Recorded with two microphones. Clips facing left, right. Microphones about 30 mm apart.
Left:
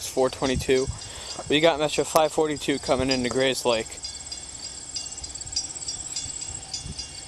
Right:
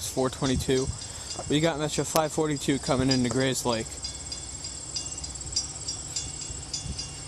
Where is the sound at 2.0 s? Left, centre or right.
Centre.